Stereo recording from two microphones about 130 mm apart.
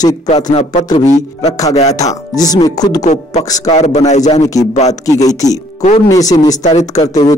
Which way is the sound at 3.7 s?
60° left (ahead or behind).